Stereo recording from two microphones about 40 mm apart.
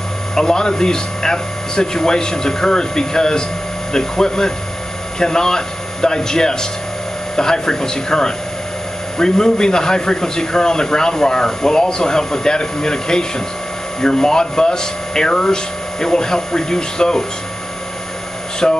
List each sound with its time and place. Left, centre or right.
0.3 s a man's voice: centre
18.6 s speech: left